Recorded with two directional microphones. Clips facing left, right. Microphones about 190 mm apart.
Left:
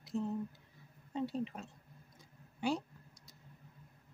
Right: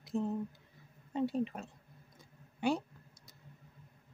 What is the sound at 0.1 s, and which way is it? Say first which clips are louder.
A woman's voice: right 2 dB; 55° right (ahead or behind).